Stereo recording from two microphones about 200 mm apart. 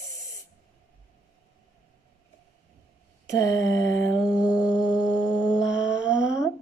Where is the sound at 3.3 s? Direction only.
15° left (ahead or behind).